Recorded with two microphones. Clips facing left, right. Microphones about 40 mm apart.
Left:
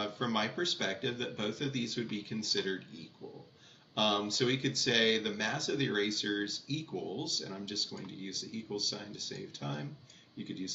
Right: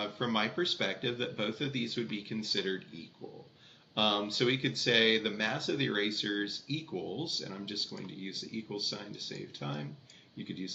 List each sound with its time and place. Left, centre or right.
0.0 s speech: centre